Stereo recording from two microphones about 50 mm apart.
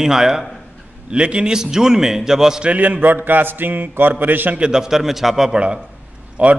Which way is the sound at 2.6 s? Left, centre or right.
Right.